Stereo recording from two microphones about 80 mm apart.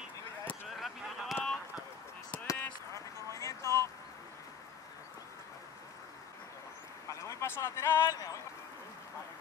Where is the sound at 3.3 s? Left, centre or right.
Left.